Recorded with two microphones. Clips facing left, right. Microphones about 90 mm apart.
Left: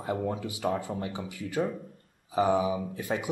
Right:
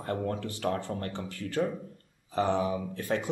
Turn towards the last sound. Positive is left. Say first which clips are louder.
# right 1 dB
turn(degrees=10)  # may be behind; listen again after turning